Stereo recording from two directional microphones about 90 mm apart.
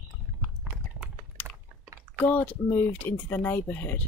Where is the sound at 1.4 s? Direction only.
20° left (ahead or behind).